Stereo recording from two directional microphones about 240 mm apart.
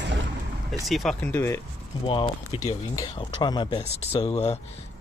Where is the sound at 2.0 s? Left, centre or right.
Left.